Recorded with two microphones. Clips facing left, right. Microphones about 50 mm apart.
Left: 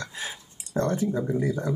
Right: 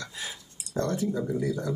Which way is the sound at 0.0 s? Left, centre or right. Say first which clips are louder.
Left 3 dB; left.